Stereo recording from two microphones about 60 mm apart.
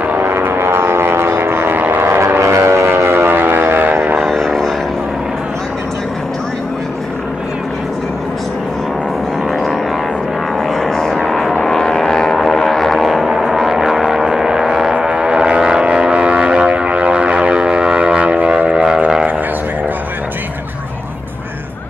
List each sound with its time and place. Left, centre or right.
0.0 s vehicle: right
0.3 s vehicle: right
4.2 s vehicle: centre
9.5 s music: centre
11.6 s vehicle: centre